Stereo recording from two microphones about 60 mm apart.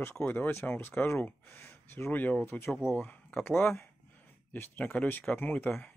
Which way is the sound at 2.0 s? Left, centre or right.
Left.